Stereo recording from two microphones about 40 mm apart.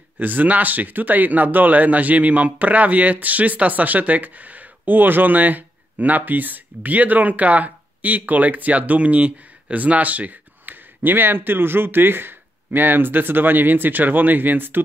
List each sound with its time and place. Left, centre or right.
0.2 s speech: right